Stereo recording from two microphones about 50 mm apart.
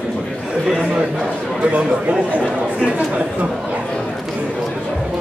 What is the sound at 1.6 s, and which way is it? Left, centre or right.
Speech, right.